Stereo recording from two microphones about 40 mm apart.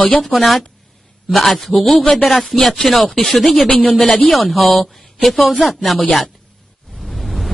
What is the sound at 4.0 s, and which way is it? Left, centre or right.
Speech, left.